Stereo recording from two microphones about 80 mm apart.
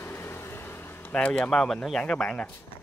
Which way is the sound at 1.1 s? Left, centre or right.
Centre.